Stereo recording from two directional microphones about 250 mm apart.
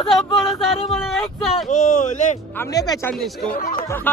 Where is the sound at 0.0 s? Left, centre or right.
Left.